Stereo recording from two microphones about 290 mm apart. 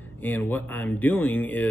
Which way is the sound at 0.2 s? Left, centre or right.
Centre.